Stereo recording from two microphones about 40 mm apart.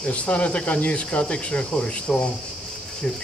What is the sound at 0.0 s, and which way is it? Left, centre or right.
Speech, left.